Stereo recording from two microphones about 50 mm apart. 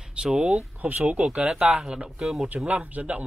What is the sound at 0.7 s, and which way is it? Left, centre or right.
Speech, right.